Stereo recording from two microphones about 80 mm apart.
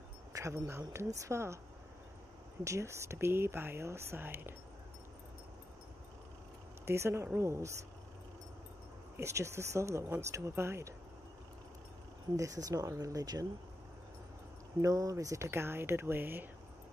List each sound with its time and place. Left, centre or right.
0.3 s speech: right
2.6 s speech: right
6.9 s speech: right
9.1 s speech: right
12.4 s speech: right
14.8 s speech: right